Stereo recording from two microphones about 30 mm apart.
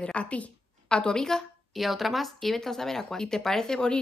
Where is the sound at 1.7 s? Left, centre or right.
Centre.